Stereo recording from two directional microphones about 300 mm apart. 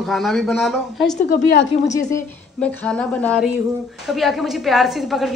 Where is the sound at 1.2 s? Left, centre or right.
Left.